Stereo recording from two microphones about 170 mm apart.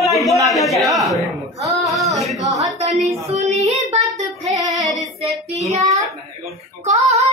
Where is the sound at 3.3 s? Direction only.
45° right (ahead or behind).